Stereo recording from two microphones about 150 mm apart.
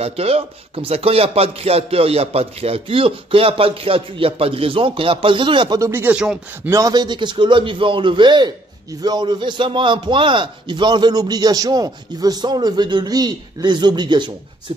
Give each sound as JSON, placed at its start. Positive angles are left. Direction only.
{"t": 0.0, "sound": "a man's voice", "side_deg": -40}
{"t": 5.8, "sound": "speech", "side_deg": -15}
{"t": 6.7, "sound": "a man's voice", "side_deg": -25}